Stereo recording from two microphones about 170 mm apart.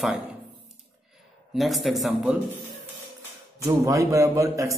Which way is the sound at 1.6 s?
Centre (ahead or behind).